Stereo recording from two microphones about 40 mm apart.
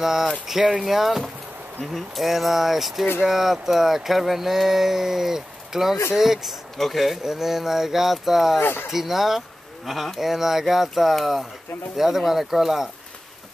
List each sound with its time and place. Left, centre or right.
0.0 s speech: centre
8.5 s speech: left
8.9 s speech: centre